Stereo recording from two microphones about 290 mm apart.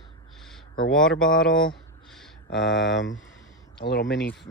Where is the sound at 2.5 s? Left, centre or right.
Left.